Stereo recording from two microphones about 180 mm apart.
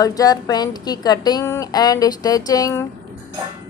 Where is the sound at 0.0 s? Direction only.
20° left (ahead or behind).